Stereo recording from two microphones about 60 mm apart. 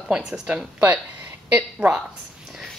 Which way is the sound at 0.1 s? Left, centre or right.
Centre.